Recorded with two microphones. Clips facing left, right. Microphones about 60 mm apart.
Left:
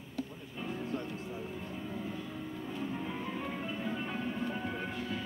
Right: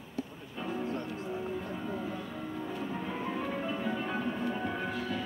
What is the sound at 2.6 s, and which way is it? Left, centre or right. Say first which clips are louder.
Music: even; right.